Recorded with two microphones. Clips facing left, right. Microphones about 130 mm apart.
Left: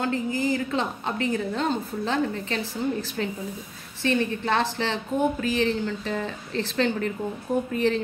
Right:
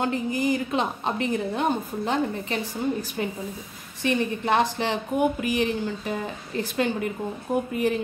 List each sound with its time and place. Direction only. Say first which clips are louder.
0.0 s a woman's voice: right 1 dB; 20° right (ahead or behind)